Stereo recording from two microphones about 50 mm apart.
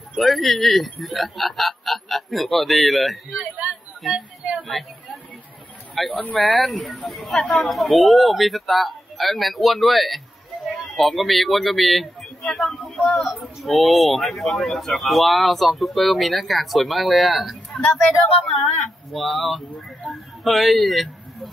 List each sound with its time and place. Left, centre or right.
0.1 s speech: centre
6.0 s speech: left
6.6 s speech: centre